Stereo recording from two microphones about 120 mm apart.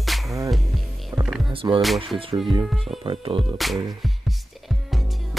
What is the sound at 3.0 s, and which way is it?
Music, 45° right (ahead or behind).